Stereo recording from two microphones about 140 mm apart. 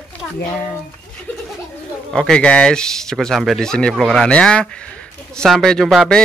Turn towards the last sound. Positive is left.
turn(degrees=5)  # may be behind; listen again after turning